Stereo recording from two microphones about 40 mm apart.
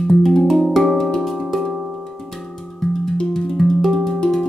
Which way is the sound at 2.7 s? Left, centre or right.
Centre.